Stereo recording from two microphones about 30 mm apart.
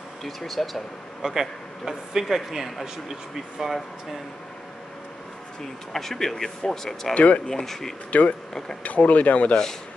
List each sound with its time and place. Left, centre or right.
0.2 s speech: centre
1.2 s speech: centre
5.9 s speech: centre
7.2 s speech: left
7.4 s speech: centre
8.1 s speech: left